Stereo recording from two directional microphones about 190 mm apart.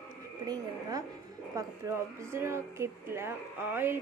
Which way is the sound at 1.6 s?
15° right (ahead or behind).